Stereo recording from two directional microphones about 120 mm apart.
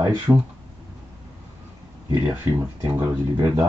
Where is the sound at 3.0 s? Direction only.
15° right (ahead or behind).